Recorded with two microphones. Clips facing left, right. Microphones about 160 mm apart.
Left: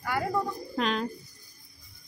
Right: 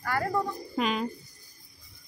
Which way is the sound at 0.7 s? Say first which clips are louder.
Even; 5° right (ahead or behind).